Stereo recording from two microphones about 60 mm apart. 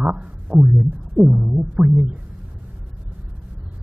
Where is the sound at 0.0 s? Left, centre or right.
Right.